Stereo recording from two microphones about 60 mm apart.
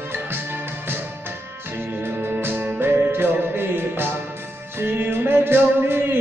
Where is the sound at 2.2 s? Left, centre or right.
Right.